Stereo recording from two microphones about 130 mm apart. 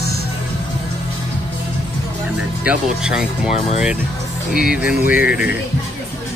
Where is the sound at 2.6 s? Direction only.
5° right (ahead or behind).